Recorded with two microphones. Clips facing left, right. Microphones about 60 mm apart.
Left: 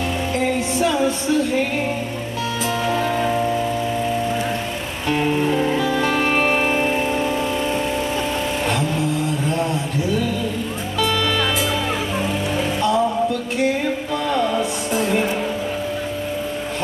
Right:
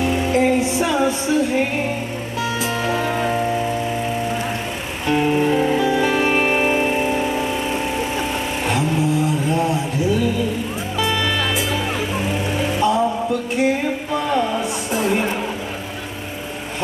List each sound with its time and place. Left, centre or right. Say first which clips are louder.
0.0 s music: right 4 dB; centre
2.8 s music: left 1 dB; centre
5.0 s music: right 2 dB; centre
9.5 s a sound: right 2 dB; centre
12.8 s music: even; centre